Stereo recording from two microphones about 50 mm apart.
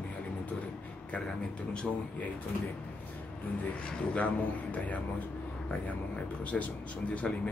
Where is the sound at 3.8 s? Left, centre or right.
Left.